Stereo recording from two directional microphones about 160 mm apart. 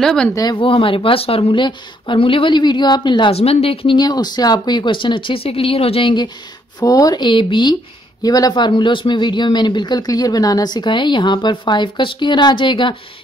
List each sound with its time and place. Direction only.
0.0 s speech: 5° left (ahead or behind)
0.3 s a man's voice: 25° left (ahead or behind)